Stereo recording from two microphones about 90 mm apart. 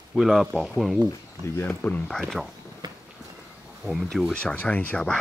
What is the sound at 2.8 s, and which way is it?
Walk, 50° right (ahead or behind).